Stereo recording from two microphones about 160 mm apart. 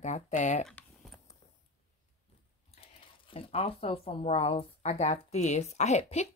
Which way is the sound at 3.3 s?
35° left (ahead or behind).